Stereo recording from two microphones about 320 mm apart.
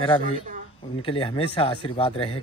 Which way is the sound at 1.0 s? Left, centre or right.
Centre.